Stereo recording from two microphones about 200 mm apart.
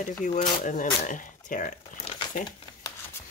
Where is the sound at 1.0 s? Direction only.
40° left (ahead or behind).